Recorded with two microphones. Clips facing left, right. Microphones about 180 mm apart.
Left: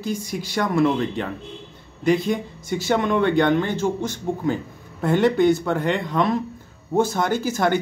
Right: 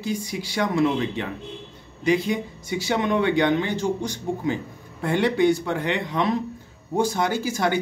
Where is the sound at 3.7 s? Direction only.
15° right (ahead or behind).